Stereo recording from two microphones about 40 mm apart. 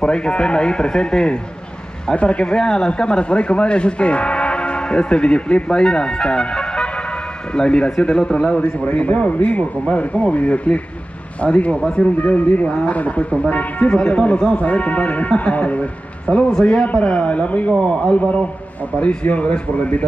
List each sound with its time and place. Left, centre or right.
0.0 s a man's voice: left
8.9 s speech: left
12.6 s speech: left
17.8 s speech: left